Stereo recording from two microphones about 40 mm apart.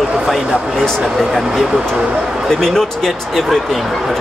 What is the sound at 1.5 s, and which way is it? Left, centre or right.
Speech, centre.